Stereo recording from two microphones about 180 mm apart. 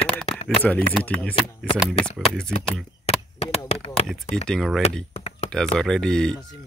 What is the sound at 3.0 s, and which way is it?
Chop, 35° left (ahead or behind).